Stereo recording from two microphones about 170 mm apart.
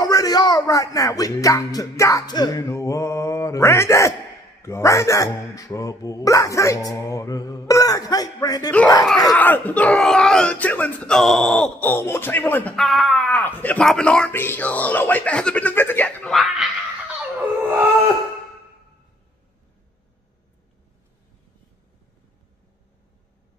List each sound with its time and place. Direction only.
0.0 s speech: 20° left (ahead or behind)
9.3 s speech: 10° left (ahead or behind)
17.4 s dog: 10° right (ahead or behind)